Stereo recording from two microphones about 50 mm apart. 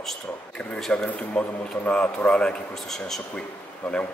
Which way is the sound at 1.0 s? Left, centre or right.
Left.